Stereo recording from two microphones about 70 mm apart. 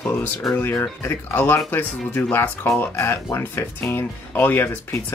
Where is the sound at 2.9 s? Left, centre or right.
Left.